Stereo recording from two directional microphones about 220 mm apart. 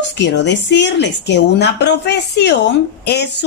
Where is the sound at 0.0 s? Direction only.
50° left (ahead or behind).